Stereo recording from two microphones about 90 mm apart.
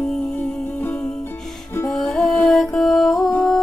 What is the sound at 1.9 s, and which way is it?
Music, 5° left (ahead or behind).